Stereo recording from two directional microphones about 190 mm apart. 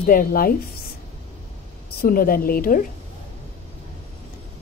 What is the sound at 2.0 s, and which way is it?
Speech, 50° left (ahead or behind).